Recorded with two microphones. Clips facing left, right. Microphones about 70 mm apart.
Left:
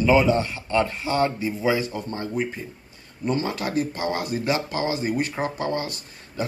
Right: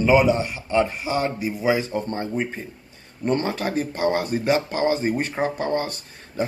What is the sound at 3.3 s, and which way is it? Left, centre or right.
Speech, right.